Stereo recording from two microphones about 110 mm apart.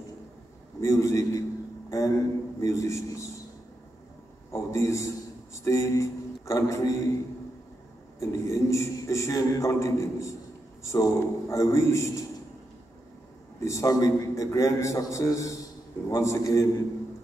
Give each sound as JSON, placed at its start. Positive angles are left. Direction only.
{"t": 0.7, "sound": "a man's voice", "side_deg": 30}
{"t": 4.5, "sound": "a man's voice", "side_deg": 25}
{"t": 8.2, "sound": "a man's voice", "side_deg": 25}
{"t": 13.6, "sound": "a man's voice", "side_deg": 30}